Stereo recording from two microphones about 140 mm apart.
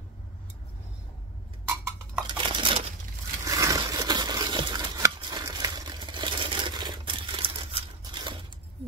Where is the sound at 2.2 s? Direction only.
35° right (ahead or behind).